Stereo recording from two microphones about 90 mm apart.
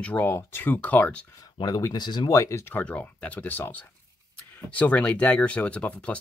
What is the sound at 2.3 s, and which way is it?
Speech, 35° left (ahead or behind).